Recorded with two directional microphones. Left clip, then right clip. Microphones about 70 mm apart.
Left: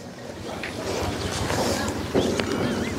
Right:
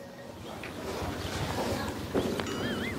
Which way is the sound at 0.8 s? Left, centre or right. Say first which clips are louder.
Left 8 dB; centre.